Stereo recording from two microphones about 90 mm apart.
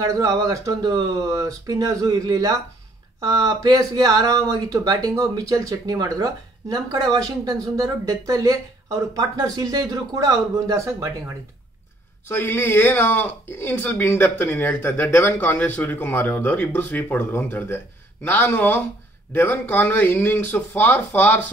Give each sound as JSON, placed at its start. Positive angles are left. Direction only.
{"t": 0.0, "sound": "speech", "side_deg": -40}
{"t": 12.3, "sound": "speech", "side_deg": 25}